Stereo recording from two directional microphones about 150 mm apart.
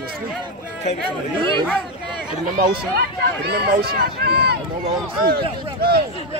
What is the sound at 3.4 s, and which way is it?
Speech, 90° right.